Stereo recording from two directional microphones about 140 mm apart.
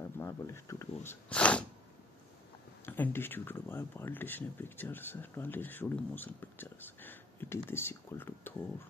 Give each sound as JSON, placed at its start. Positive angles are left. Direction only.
{"t": 0.2, "sound": "speech", "side_deg": 20}
{"t": 1.3, "sound": "sneeze", "side_deg": 10}
{"t": 2.8, "sound": "speech", "side_deg": 15}